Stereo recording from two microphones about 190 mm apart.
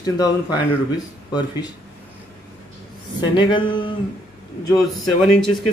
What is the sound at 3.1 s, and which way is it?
Speech, 25° left (ahead or behind).